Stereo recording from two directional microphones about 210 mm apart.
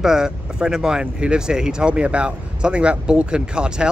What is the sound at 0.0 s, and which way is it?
Speech, 5° right (ahead or behind).